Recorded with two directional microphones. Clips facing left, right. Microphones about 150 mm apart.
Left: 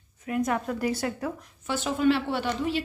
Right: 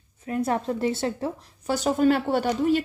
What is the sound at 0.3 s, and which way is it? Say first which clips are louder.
A woman's voice: right 2 dB; 30° right (ahead or behind).